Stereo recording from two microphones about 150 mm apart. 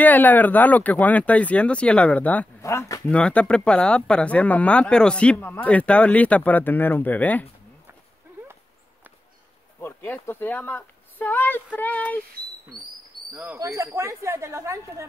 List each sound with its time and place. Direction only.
0.0 s speech: 10° left (ahead or behind)
3.1 s speech: 10° left (ahead or behind)
9.8 s speech: 15° left (ahead or behind)
13.3 s speech: 10° right (ahead or behind)